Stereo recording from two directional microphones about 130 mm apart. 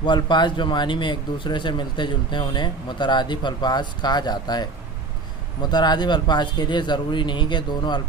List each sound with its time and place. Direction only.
0.0 s speech: 35° left (ahead or behind)